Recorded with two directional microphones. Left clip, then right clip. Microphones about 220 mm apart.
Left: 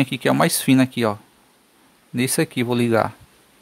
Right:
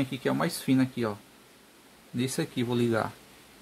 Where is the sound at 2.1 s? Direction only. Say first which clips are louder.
Left 10 dB; 40° left (ahead or behind).